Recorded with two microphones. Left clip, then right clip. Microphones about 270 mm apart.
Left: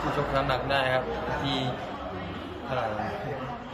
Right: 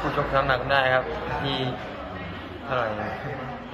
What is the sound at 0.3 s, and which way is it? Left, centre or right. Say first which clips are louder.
A man's voice: right 6 dB; centre.